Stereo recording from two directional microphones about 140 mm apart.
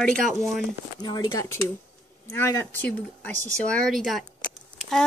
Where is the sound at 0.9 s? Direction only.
30° left (ahead or behind).